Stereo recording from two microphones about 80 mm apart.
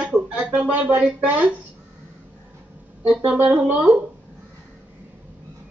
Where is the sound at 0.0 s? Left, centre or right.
Centre.